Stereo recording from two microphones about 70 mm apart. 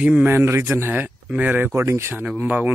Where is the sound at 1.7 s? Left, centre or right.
Right.